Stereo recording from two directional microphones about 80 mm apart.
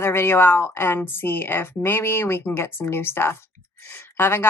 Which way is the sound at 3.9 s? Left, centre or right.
Left.